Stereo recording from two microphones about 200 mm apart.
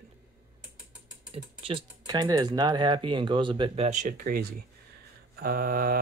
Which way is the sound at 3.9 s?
40° right (ahead or behind).